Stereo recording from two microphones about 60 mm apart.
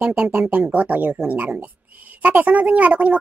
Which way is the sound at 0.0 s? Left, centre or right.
Centre.